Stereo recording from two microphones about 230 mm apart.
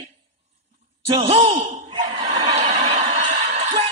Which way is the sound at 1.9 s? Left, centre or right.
Right.